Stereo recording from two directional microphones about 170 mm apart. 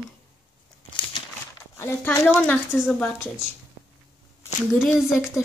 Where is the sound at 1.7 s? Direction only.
15° left (ahead or behind).